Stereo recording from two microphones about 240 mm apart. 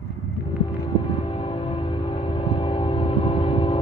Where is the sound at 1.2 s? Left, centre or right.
Left.